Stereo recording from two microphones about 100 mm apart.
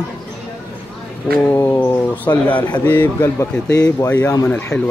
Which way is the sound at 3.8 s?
20° left (ahead or behind).